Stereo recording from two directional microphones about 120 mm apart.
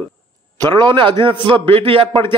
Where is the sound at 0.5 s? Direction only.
35° right (ahead or behind).